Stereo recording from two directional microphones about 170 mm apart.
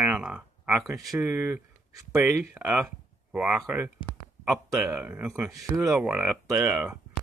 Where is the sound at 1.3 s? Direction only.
15° right (ahead or behind).